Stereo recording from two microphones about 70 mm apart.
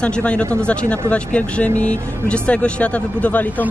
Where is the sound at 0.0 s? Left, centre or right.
Centre.